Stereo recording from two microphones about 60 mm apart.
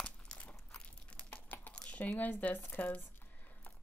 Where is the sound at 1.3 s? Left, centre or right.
Left.